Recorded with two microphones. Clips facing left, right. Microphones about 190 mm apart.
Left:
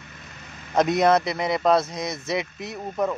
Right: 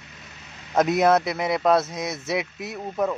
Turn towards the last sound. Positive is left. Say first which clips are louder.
# even
turn(degrees=-5)  # may be behind; listen again after turning